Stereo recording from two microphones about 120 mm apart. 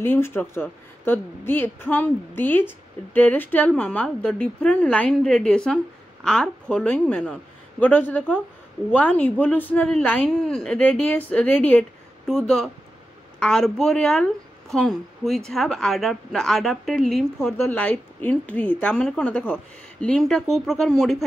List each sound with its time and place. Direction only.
0.0 s speech: 20° left (ahead or behind)
12.3 s a woman's voice: centre (ahead or behind)
17.6 s speech: 15° left (ahead or behind)